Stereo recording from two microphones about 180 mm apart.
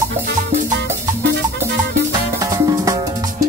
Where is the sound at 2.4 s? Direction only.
20° right (ahead or behind).